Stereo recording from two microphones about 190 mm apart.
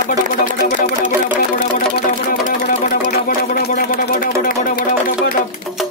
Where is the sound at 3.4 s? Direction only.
50° left (ahead or behind).